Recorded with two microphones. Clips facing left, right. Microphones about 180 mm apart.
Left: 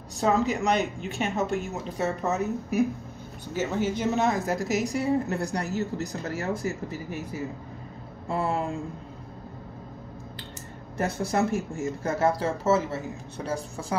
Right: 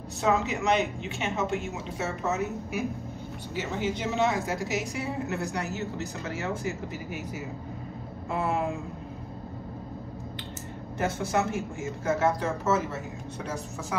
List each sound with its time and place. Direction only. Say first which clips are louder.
0.2 s a woman's voice: left 2 dB; 40° left (ahead or behind)
11.1 s a woman's voice: left 2 dB; 35° left (ahead or behind)